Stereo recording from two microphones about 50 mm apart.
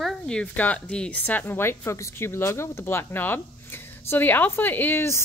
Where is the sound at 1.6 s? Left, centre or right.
Left.